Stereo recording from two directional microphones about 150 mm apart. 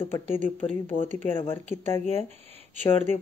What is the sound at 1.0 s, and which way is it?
Speech, 55° right (ahead or behind).